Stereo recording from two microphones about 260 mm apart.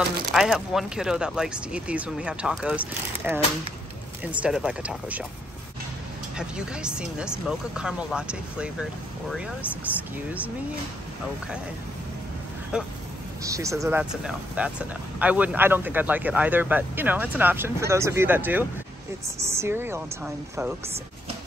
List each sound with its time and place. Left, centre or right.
0.3 s speech: centre
6.3 s speech: centre
12.7 s speech: centre